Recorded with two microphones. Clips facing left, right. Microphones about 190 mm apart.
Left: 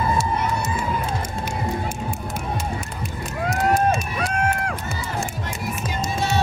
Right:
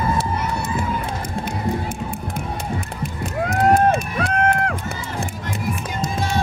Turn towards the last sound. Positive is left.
turn(degrees=-60)  # may be behind; listen again after turning